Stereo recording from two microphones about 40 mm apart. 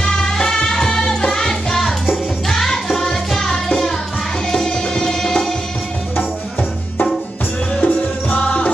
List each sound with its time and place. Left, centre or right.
0.0 s music: centre
7.7 s music: left